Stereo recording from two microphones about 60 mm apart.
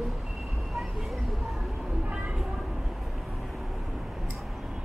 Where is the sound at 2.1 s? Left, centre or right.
Centre.